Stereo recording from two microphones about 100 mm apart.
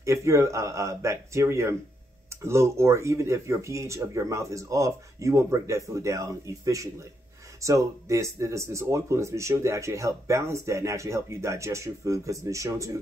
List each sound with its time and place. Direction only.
0.0 s speech: 30° right (ahead or behind)